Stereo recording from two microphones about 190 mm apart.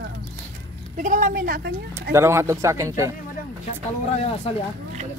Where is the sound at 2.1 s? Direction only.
15° right (ahead or behind).